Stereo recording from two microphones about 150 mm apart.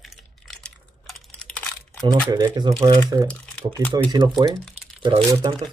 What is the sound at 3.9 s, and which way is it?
Speech, 30° right (ahead or behind).